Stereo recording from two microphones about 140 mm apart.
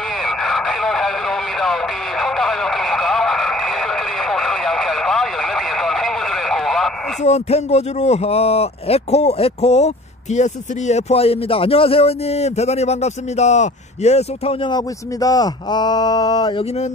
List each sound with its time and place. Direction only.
0.2 s radio: centre (ahead or behind)
7.2 s speech: 50° left (ahead or behind)
14.7 s speech: 25° left (ahead or behind)